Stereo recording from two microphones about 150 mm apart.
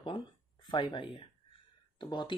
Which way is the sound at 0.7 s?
30° left (ahead or behind).